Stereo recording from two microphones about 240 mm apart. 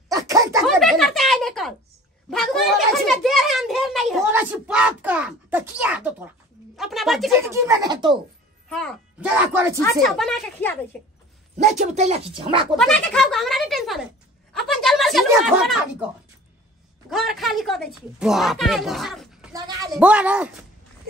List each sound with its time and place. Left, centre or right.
0.1 s a sound: centre
0.7 s a sound: centre
6.8 s speech: centre
7.5 s speech: centre
8.6 s speech: centre
11.5 s speech: right
12.7 s a woman's voice: centre
17.1 s speech: centre
19.5 s speech: centre
20.0 s speech: centre